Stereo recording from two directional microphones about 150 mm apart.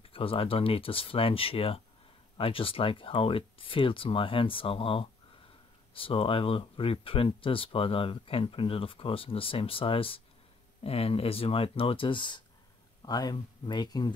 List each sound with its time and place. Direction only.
0.0 s speech: 40° left (ahead or behind)